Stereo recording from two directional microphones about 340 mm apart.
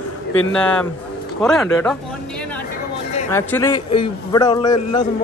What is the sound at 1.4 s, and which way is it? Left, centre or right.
A man's voice, centre.